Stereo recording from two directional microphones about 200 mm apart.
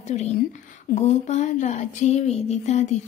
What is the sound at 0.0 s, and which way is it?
A woman's voice, 35° left (ahead or behind).